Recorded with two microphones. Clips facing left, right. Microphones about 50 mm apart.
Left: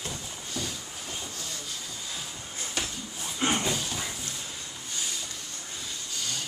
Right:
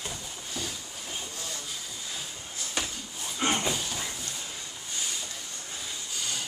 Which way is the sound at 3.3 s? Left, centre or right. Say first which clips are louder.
Even; centre.